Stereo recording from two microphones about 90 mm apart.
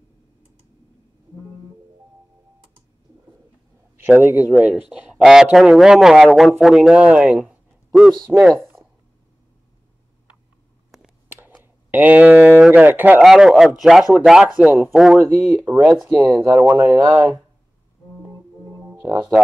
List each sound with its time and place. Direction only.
3.9 s a man's voice: 25° right (ahead or behind)
4.6 s a man's voice: 10° right (ahead or behind)
11.2 s a sound: 25° right (ahead or behind)
12.7 s speech: 20° right (ahead or behind)
13.2 s a man's voice: 5° right (ahead or behind)
15.6 s speech: 20° right (ahead or behind)
15.9 s a man's voice: 5° right (ahead or behind)
16.4 s speech: 25° right (ahead or behind)
18.9 s speech: 15° right (ahead or behind)